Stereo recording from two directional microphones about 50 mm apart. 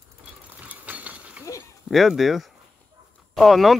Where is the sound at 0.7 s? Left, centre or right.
Right.